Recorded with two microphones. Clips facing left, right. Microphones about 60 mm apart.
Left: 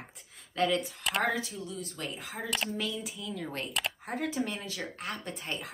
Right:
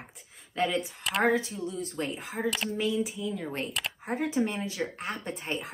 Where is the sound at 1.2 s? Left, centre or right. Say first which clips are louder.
Right 5 dB; right.